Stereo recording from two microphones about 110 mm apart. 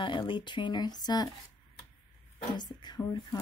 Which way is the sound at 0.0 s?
50° left (ahead or behind).